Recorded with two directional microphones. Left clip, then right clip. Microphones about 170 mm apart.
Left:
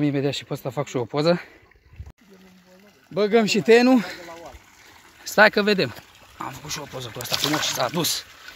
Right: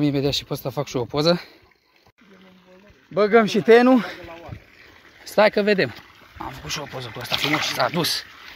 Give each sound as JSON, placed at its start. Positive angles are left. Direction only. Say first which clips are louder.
{"t": 0.0, "sound": "speech", "louder": "right 2 dB", "side_deg": -20}
{"t": 3.2, "sound": "speech", "louder": "right 3 dB", "side_deg": 15}
{"t": 6.6, "sound": "speech", "louder": "right 3 dB", "side_deg": 0}
{"t": 7.2, "sound": "speech", "louder": "right 2 dB", "side_deg": 15}